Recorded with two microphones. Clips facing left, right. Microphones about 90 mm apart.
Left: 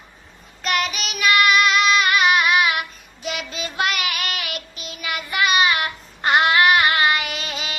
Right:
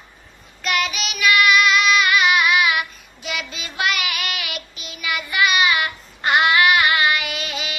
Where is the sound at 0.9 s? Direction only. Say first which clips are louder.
Right 2 dB; 40° left (ahead or behind).